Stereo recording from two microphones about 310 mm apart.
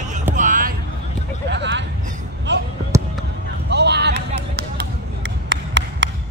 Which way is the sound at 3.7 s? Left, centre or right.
Right.